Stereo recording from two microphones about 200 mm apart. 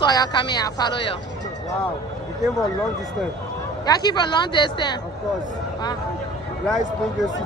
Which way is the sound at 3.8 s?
20° left (ahead or behind).